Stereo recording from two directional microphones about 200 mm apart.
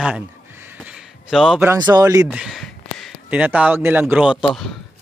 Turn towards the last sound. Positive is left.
turn(degrees=0)  # may be behind; listen again after turning